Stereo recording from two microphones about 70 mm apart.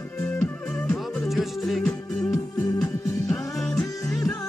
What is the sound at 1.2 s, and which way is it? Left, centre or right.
Music, centre.